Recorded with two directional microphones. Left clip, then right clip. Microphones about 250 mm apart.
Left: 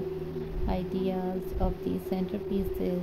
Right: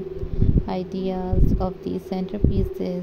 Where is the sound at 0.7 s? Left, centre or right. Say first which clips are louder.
Even; centre.